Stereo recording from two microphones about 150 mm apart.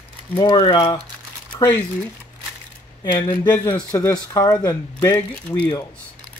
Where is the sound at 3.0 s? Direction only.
25° left (ahead or behind).